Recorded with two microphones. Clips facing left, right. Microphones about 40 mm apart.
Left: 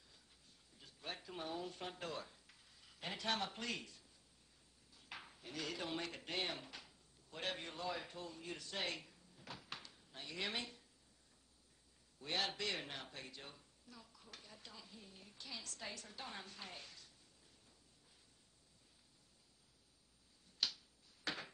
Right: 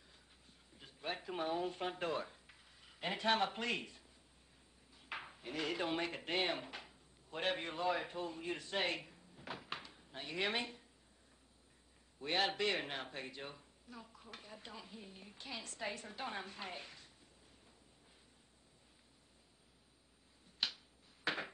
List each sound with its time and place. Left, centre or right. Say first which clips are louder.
0.7 s speech: right 6 dB; right
12.2 s speech: right 6 dB; right
20.6 s a sound: right 2 dB; right